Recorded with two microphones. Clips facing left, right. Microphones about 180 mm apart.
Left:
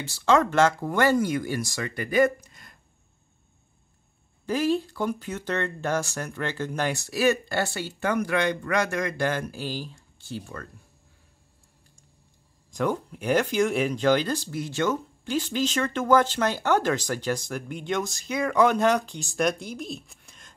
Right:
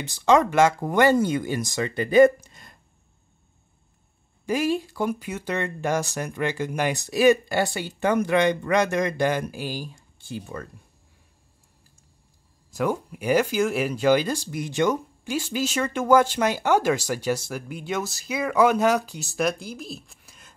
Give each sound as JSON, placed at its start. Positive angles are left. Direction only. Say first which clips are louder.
{"t": 0.0, "sound": "speech", "louder": "right 2 dB", "side_deg": -15}
{"t": 4.5, "sound": "speech", "louder": "even", "side_deg": -10}
{"t": 12.7, "sound": "speech", "louder": "right 1 dB", "side_deg": -10}